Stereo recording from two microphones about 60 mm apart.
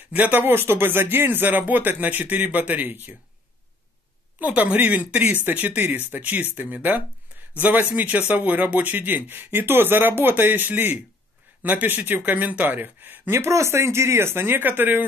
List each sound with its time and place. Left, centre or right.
0.1 s speech: right
4.4 s speech: right
13.3 s speech: right